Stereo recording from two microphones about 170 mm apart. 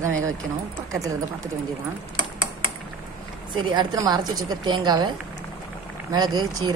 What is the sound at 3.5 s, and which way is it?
Speech, 25° right (ahead or behind).